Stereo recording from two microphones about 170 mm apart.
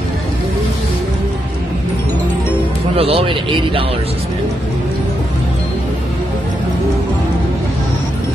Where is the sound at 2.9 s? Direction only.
35° right (ahead or behind).